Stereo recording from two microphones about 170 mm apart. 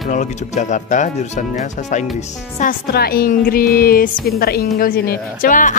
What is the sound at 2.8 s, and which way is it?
A woman's voice, 65° left (ahead or behind).